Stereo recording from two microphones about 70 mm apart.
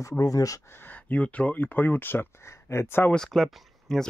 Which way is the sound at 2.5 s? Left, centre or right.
Left.